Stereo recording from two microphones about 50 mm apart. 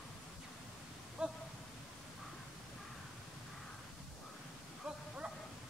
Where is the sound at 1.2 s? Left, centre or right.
Centre.